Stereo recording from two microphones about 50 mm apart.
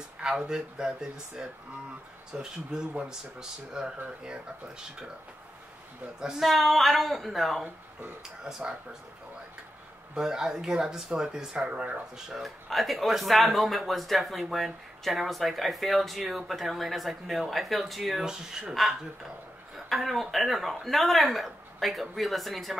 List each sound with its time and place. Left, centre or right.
0.4 s speech: centre
6.1 s speech: centre
8.5 s speech: centre
10.1 s speech: centre
12.4 s speech: centre
18.2 s speech: centre
19.7 s speech: centre